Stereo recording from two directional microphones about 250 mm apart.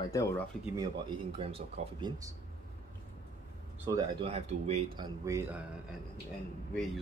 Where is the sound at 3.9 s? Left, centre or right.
Right.